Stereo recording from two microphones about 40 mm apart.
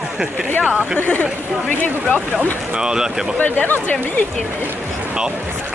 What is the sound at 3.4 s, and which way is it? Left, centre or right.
Speech, left.